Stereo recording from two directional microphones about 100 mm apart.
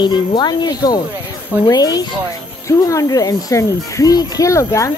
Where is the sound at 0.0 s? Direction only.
50° left (ahead or behind).